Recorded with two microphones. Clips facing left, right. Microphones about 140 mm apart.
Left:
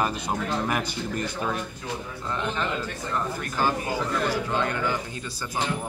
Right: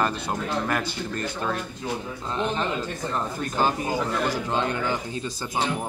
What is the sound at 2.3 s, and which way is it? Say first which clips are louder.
A man's voice: right 2 dB; 25° right (ahead or behind).